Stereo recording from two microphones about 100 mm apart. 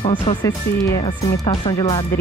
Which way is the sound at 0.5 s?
35° left (ahead or behind).